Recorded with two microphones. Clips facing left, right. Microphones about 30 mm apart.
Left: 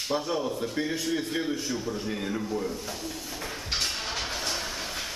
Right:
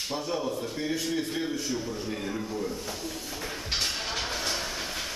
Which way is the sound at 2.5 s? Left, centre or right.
Centre.